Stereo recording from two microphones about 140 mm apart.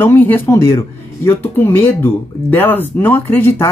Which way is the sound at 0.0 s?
15° left (ahead or behind).